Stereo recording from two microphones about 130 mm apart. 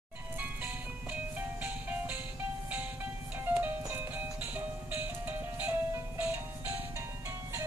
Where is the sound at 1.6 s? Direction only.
10° right (ahead or behind).